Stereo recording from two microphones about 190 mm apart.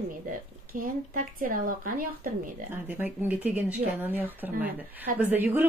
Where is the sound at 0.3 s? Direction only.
50° right (ahead or behind).